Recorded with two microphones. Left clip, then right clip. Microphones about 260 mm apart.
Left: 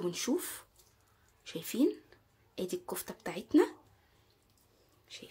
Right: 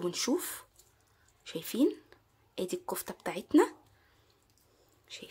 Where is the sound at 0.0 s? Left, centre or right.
Centre.